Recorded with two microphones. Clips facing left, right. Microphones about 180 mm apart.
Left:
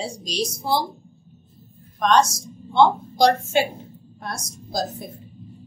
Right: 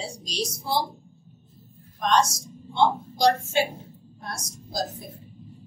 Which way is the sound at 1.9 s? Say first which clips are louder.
Left 4 dB; 80° left.